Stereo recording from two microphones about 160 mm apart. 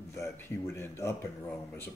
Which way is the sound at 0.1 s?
15° left (ahead or behind).